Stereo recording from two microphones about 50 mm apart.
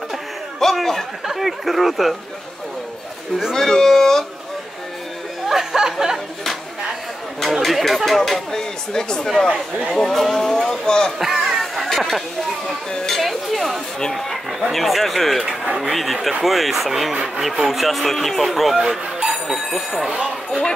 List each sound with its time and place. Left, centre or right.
0.6 s speech: centre
3.5 s speech: centre
5.5 s speech: centre
7.4 s speech: centre
9.5 s speech: right
9.9 s speech: centre
11.1 s chatter: centre
12.9 s speech: centre
13.2 s speech: centre
18.8 s speech: centre
20.1 s speech: right